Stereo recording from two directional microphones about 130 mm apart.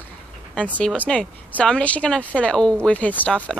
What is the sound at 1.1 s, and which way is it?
A woman's voice, 5° left (ahead or behind).